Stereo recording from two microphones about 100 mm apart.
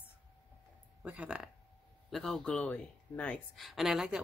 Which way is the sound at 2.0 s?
Centre (ahead or behind).